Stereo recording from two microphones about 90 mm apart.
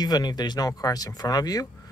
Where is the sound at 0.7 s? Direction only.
40° left (ahead or behind).